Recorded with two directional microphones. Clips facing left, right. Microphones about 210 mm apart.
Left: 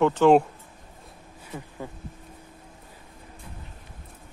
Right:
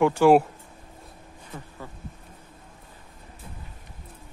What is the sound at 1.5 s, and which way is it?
Speech, 15° left (ahead or behind).